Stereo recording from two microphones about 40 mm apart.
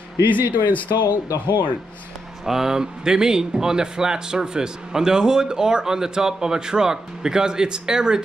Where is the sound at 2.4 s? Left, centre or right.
Centre.